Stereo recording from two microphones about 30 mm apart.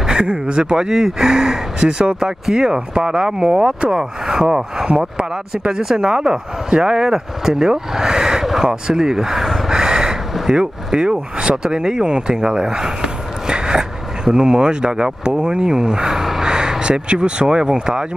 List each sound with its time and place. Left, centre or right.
0.0 s speech: right
0.7 s speech: right
1.9 s speech: right
2.5 s speech: right
4.8 s speech: right; by 9.8 s centre
9.8 s a sound: right
10.5 s speech: right
16.4 s a sound: right
16.8 s speech: right